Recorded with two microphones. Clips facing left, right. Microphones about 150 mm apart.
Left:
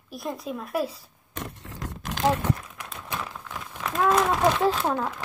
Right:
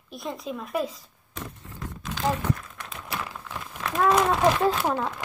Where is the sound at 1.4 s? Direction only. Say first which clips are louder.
Left 2 dB; 85° left.